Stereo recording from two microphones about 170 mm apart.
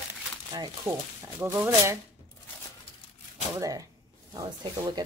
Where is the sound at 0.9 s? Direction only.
15° right (ahead or behind).